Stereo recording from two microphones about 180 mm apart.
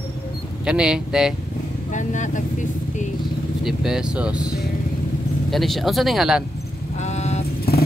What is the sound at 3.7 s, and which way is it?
Speech, 5° right (ahead or behind).